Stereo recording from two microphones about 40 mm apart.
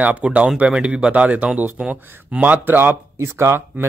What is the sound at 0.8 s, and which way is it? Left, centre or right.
Speech, right.